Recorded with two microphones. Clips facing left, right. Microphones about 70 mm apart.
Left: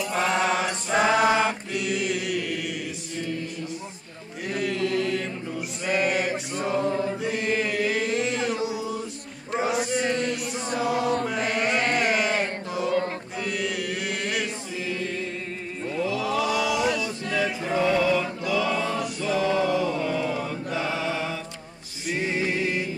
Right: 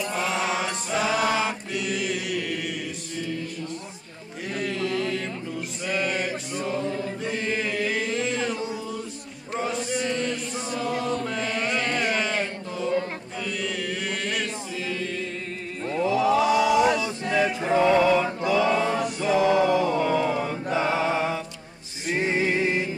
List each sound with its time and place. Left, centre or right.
0.1 s mantra: centre
0.9 s choir: left
1.2 s mantra: centre
4.7 s mantra: right
5.9 s a sound: centre
6.7 s choir: left
7.2 s chant: centre
10.3 s chant: left
12.0 s chant: centre
15.9 s chant: right
22.1 s music: right